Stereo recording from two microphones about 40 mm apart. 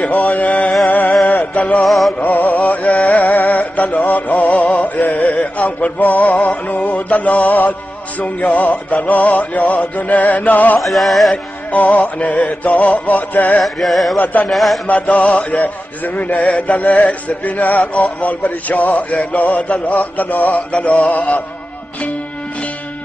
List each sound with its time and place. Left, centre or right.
0.0 s music: left
0.8 s a sound: left
1.2 s music: left
1.9 s music: centre
2.1 s music: left
10.8 s music: centre
11.7 s music: left
13.6 s music: centre
14.1 s music: left
14.5 s music: centre
14.9 s music: left